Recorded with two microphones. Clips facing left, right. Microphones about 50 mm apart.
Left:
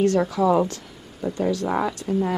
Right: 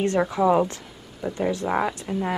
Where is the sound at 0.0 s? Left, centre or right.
Right.